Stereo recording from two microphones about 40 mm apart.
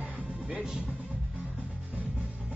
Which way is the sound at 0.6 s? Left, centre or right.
Centre.